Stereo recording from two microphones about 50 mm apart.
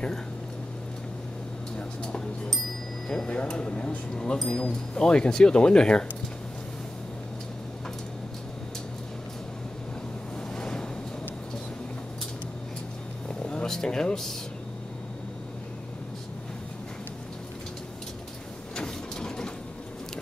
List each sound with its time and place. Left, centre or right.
3.1 s speech: centre
10.5 s a sound: centre
13.3 s vehicle: centre
13.7 s speech: centre
18.8 s vehicle: centre